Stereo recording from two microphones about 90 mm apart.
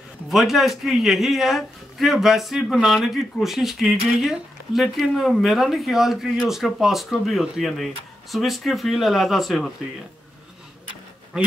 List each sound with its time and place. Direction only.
0.3 s a man's voice: centre (ahead or behind)